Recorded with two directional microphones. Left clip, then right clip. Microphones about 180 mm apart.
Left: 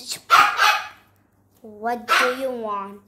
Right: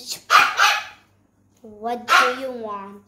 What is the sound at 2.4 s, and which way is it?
Speech, 10° left (ahead or behind).